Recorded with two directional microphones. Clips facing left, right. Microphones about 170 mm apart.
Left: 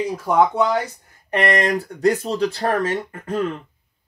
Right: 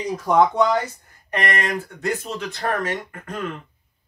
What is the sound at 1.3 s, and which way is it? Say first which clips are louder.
Speech: left 5 dB; 30° left (ahead or behind).